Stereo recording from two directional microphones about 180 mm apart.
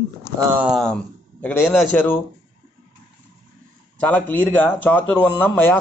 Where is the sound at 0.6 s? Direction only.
Centre (ahead or behind).